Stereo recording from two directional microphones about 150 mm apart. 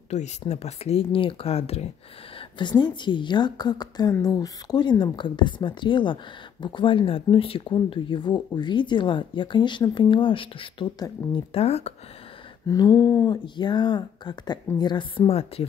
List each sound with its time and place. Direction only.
0.1 s speech: 50° left (ahead or behind)
2.8 s speech: 30° left (ahead or behind)
12.6 s speech: 25° left (ahead or behind); by 15.6 s 40° left (ahead or behind)